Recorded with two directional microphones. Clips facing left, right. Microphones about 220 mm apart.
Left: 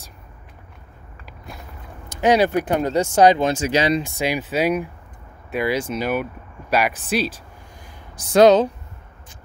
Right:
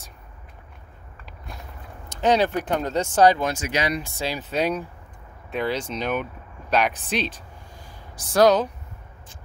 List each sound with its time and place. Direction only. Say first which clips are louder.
2.2 s speech: left 4 dB; 10° left (ahead or behind); by 4.1 s 25° left (ahead or behind)
4.2 s speech: left 4 dB; 10° left (ahead or behind)
8.3 s speech: left 5 dB; 25° left (ahead or behind)